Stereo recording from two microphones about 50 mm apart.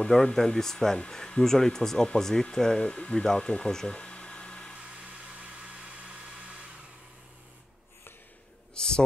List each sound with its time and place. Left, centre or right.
0.1 s speech: centre
2.8 s speech: left
5.3 s hair dryer: centre
8.7 s a sound: centre